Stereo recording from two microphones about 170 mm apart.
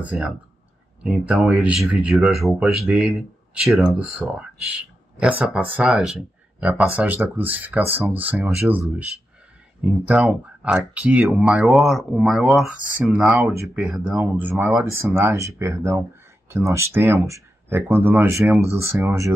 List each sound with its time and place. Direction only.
0.0 s speech: 10° right (ahead or behind)
13.4 s speech: 15° right (ahead or behind)
13.7 s speech: 5° right (ahead or behind)